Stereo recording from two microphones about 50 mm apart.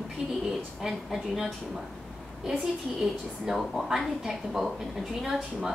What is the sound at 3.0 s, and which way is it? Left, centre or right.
A woman's voice, centre.